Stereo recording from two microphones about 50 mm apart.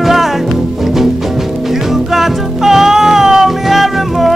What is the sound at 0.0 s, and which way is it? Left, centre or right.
Music, centre.